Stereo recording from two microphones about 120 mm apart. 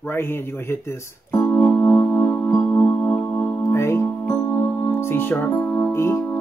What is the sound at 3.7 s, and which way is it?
Music, 20° left (ahead or behind).